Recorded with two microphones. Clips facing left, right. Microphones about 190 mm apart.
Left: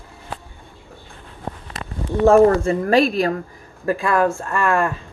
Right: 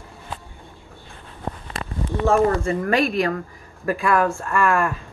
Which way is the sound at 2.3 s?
35° left (ahead or behind).